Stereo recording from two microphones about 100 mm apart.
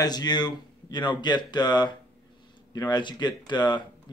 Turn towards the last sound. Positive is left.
turn(degrees=50)  # may be behind; listen again after turning